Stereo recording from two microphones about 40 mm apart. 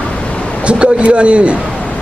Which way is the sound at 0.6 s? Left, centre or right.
Right.